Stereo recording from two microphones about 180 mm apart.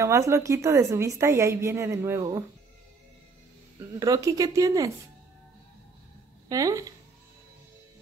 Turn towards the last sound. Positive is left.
turn(degrees=-20)  # may be behind; listen again after turning